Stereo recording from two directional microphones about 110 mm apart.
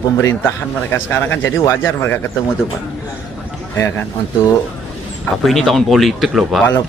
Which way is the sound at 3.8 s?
25° left (ahead or behind).